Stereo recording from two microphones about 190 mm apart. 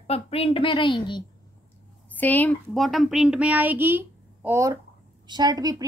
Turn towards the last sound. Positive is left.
turn(degrees=-20)  # may be behind; listen again after turning